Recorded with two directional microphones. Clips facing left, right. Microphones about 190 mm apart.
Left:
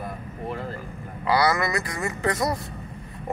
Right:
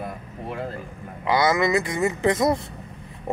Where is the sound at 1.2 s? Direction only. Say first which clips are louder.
Right 2 dB; 20° right (ahead or behind).